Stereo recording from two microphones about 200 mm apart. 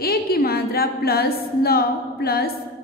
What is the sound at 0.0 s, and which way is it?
A woman's voice, 50° left (ahead or behind).